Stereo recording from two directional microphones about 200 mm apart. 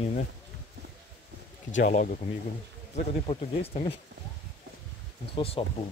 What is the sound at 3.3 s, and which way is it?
Speech, 30° left (ahead or behind).